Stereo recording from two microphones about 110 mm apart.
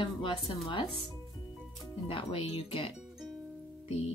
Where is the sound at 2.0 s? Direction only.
55° left (ahead or behind).